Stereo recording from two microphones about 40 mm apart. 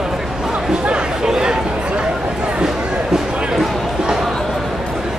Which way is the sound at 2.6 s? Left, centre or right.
Centre.